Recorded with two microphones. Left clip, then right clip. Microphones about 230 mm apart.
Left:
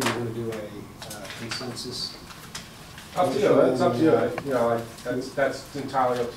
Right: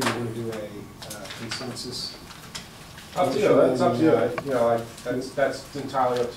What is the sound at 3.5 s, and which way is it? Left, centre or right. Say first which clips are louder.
Speech: right 1 dB; centre.